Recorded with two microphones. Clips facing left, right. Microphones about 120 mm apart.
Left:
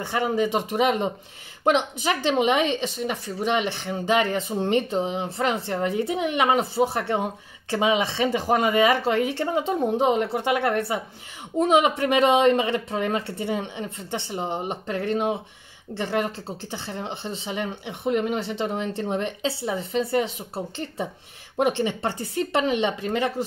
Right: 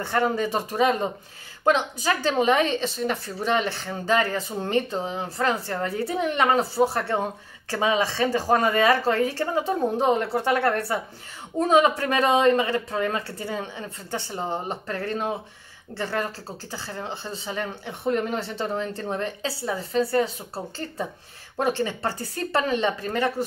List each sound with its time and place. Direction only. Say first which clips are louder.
0.0 s a woman's voice: even; 15° left (ahead or behind)